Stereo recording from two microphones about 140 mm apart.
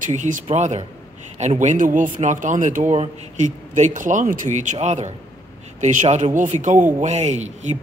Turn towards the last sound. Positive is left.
turn(degrees=-55)  # may be behind; listen again after turning